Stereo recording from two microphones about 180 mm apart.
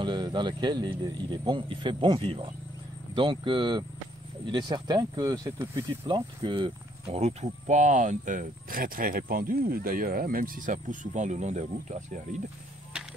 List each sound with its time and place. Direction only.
0.0 s speech: 25° right (ahead or behind); by 12.4 s 40° right (ahead or behind)